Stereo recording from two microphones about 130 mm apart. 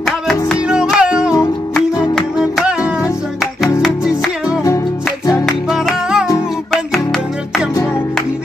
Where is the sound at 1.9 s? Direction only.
30° left (ahead or behind).